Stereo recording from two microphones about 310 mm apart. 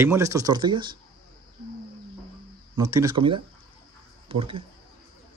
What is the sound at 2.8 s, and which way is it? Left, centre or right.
Speech, centre.